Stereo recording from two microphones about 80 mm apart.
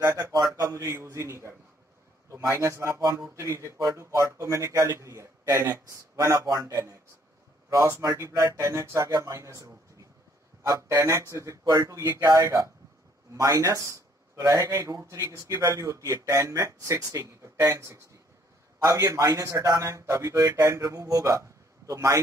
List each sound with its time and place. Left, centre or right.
0.0 s speech: right
0.5 s a sound: right
0.9 s speech: right
6.4 s speech: right
7.7 s speech: right
10.7 s speech: right
12.2 s speech: right
13.3 s a man's voice: right